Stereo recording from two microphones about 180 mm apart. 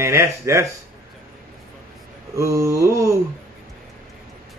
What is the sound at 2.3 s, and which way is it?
Speech, 15° right (ahead or behind).